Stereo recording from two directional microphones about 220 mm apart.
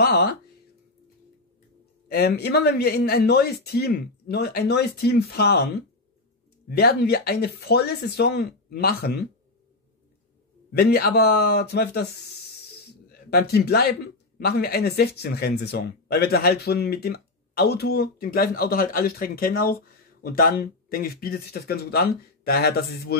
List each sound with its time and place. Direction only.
0.0 s speech: 45° left (ahead or behind)
2.0 s speech: 45° left (ahead or behind)
10.8 s a man's voice: 45° left (ahead or behind)